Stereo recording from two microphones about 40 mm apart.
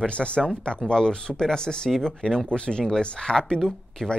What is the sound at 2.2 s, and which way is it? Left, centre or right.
Speech, left.